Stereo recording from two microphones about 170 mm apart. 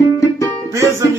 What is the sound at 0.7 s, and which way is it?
Music, 15° right (ahead or behind).